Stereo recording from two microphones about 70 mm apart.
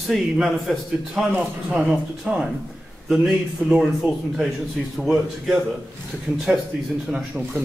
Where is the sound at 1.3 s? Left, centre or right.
Centre.